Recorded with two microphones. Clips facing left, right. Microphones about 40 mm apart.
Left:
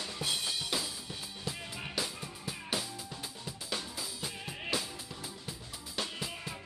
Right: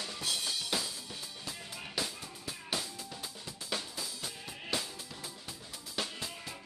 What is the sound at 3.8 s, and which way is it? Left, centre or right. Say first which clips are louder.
Drum kit: left 1 dB; centre.